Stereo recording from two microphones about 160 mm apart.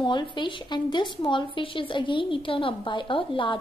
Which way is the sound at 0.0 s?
30° left (ahead or behind).